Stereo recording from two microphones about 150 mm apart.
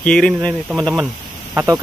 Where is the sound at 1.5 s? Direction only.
15° right (ahead or behind).